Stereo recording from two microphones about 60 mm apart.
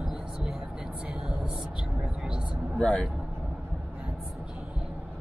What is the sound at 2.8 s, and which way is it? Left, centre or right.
Speech, centre.